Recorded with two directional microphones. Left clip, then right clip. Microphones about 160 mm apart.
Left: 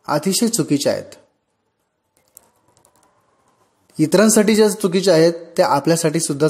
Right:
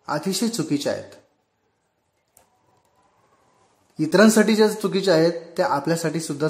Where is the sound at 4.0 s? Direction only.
30° left (ahead or behind).